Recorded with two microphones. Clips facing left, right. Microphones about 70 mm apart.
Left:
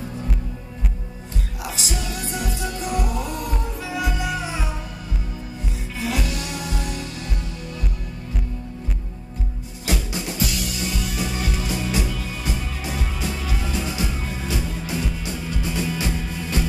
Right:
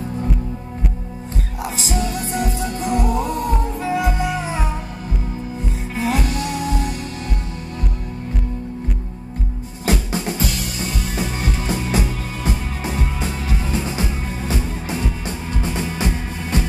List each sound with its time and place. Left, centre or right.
1.6 s music: right
5.9 s music: right
9.8 s music: right